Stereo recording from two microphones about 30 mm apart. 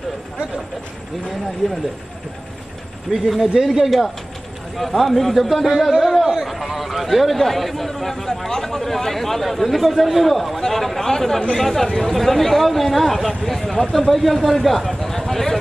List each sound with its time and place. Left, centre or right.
3.1 s speech: centre